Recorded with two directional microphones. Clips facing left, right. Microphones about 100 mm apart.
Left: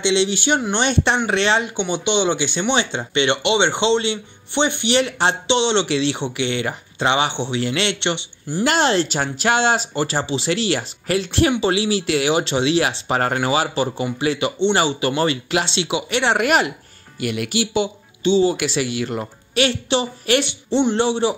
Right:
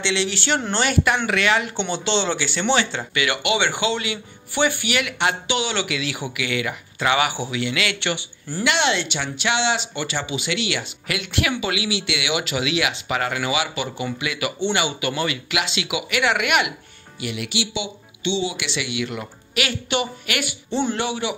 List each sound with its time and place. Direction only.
0.0 s speech: 20° left (ahead or behind)
1.8 s speech: 15° left (ahead or behind)
8.6 s speech: 40° left (ahead or behind)
17.2 s speech: 50° left (ahead or behind); by 21.4 s 30° left (ahead or behind)